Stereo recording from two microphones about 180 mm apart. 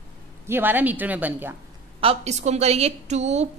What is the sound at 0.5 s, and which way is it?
A woman's voice, 10° right (ahead or behind).